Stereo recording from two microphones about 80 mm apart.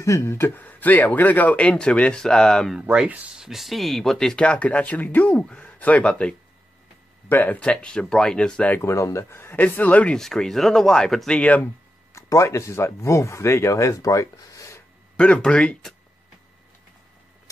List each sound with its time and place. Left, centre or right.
0.0 s speech: left; by 2.7 s centre
2.8 s speech: centre
8.8 s speech: left
9.6 s speech: left
10.1 s speech: centre
11.6 s speech: left
15.1 s speech: centre